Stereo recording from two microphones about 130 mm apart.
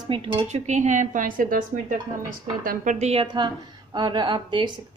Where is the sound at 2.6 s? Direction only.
70° right (ahead or behind); by 4.8 s 35° right (ahead or behind).